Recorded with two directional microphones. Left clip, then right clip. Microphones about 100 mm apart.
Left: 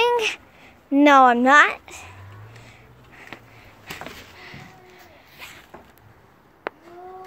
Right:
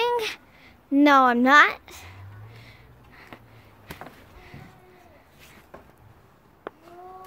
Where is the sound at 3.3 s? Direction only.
90° left.